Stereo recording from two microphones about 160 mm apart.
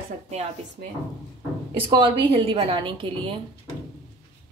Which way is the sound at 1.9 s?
30° right (ahead or behind).